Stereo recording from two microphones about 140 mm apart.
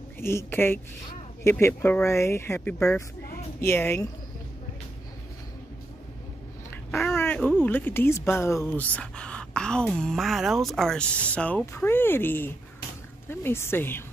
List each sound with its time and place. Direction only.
0.2 s speech: 20° left (ahead or behind)
6.9 s a sound: centre (ahead or behind)
7.2 s speech: 15° left (ahead or behind)